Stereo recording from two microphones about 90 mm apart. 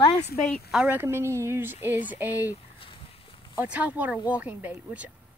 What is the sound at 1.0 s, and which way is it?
Speech, 30° right (ahead or behind).